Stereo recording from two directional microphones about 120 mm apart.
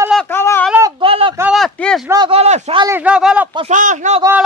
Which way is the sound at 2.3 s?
55° right (ahead or behind).